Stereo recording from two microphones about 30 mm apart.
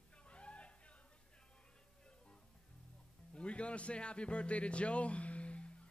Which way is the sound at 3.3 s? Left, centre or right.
Left.